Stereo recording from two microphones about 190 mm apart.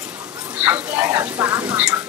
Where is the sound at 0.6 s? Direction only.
10° right (ahead or behind).